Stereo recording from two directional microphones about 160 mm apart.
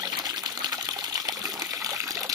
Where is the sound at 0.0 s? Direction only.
25° right (ahead or behind).